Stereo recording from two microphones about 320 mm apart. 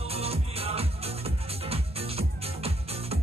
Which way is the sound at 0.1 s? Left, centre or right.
Centre.